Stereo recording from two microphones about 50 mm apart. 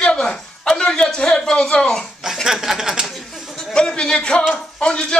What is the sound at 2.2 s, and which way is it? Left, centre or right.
Speech, centre.